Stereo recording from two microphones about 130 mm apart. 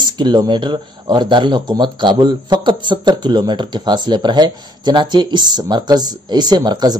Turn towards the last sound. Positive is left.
turn(degrees=-35)  # may be behind; listen again after turning